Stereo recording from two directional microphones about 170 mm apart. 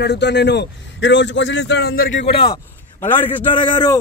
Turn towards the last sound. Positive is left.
turn(degrees=25)  # may be behind; listen again after turning